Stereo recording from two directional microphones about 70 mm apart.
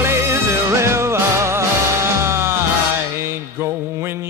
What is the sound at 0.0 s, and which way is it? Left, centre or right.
Music, right.